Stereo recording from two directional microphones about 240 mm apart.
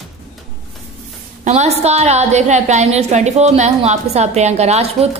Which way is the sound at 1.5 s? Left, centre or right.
Right.